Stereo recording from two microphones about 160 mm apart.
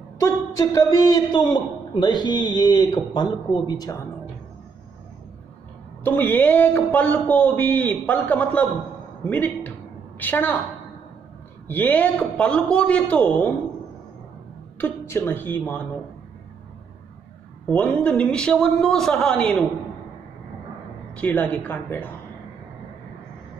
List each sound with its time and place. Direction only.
0.2 s a man's voice: 20° left (ahead or behind)
6.0 s a man's voice: 10° left (ahead or behind)
11.6 s a man's voice: 10° left (ahead or behind)
14.8 s a man's voice: 15° left (ahead or behind)
17.6 s a man's voice: 10° left (ahead or behind)
21.1 s a man's voice: 10° left (ahead or behind)